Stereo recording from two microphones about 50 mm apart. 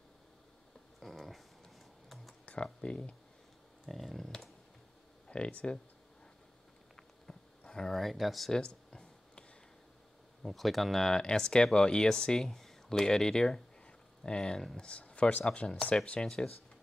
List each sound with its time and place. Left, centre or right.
0.9 s dog: centre
2.4 s speech: left
3.9 s speech: centre
5.3 s speech: left
7.3 s a sound: centre
7.7 s speech: centre
8.5 s a sound: centre
10.4 s speech: centre
14.9 s speech: left